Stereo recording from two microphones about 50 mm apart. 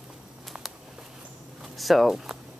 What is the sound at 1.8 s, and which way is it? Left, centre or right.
Speech, centre.